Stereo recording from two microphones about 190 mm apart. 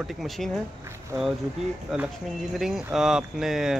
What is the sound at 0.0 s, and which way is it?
Speech, centre (ahead or behind).